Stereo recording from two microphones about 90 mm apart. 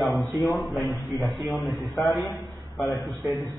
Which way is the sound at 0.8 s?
40° left (ahead or behind).